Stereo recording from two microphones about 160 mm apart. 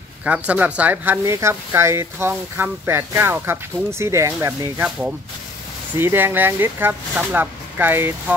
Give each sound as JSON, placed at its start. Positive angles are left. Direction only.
{"t": 0.2, "sound": "speech", "side_deg": -10}
{"t": 5.9, "sound": "speech", "side_deg": -15}